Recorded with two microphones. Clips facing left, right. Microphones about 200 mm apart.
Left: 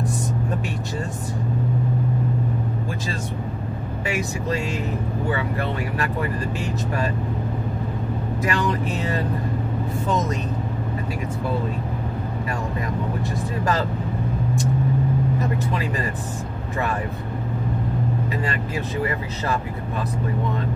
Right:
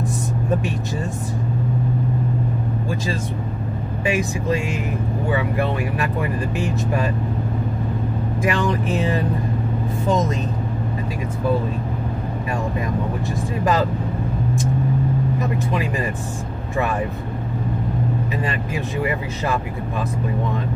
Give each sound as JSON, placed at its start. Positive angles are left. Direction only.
{"t": 4.1, "sound": "speech", "side_deg": -20}
{"t": 8.5, "sound": "speech", "side_deg": -20}